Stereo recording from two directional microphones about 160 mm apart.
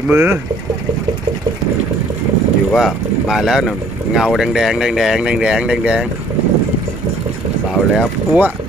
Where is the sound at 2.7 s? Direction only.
Centre (ahead or behind).